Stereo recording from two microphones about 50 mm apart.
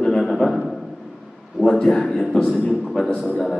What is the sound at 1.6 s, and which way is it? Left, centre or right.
Speech, centre.